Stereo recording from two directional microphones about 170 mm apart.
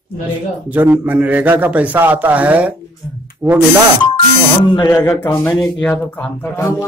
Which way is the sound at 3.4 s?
20° right (ahead or behind).